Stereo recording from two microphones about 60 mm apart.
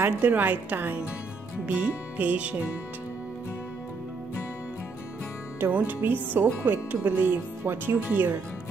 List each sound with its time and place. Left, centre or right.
0.2 s a woman's voice: right
5.7 s speech: right